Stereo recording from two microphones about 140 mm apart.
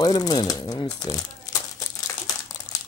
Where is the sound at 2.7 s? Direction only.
30° left (ahead or behind).